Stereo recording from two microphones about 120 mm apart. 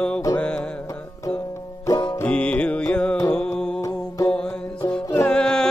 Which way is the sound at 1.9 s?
35° left (ahead or behind).